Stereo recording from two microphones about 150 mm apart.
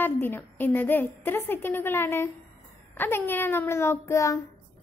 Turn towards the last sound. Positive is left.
turn(degrees=20)  # may be behind; listen again after turning